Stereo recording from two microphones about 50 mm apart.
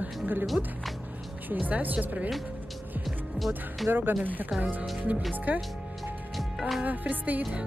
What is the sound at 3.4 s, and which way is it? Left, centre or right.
Music, right.